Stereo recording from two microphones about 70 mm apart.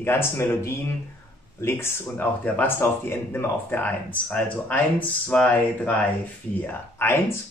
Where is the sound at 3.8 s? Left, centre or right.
Centre.